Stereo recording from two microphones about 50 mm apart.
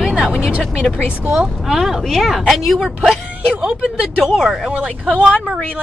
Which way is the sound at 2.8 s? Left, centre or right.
Centre.